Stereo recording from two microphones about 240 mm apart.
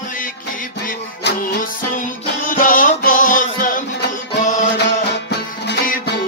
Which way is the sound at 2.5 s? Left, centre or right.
Left.